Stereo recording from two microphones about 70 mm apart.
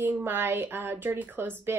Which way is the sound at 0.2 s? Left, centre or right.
Right.